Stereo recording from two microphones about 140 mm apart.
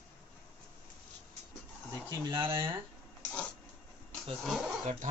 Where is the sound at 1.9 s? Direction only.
30° right (ahead or behind).